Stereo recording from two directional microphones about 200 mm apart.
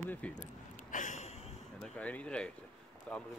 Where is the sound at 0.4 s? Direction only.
40° left (ahead or behind).